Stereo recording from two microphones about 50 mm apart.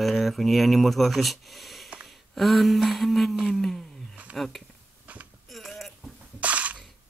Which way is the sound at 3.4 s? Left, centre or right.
Centre.